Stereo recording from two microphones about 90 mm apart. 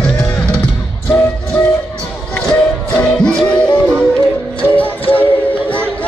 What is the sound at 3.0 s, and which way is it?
Music, 10° left (ahead or behind).